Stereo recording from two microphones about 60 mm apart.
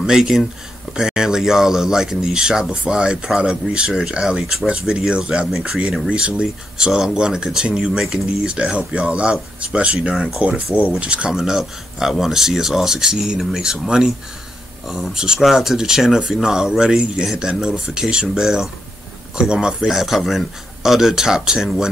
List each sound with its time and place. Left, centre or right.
0.0 s speech: centre
10.7 s speech: right
11.3 s speech: centre
19.9 s speech: centre